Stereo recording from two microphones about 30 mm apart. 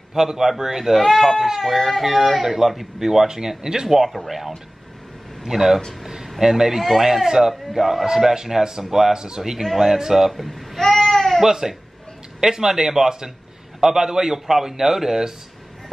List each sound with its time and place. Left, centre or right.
0.1 s speech: centre
0.9 s speech: centre
2.4 s speech: centre
4.1 s speech: centre
9.1 s speech: right
9.4 s speech: centre
10.3 s baby cry: centre
11.4 s speech: centre